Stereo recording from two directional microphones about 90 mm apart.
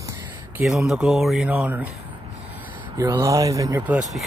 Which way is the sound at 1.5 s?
15° right (ahead or behind).